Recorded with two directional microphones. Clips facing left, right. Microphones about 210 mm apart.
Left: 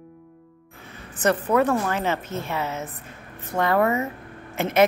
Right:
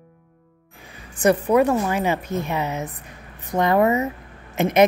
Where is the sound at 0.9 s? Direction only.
10° right (ahead or behind).